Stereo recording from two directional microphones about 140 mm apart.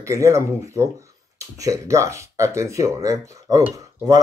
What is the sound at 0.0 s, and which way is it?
Speech, 20° right (ahead or behind).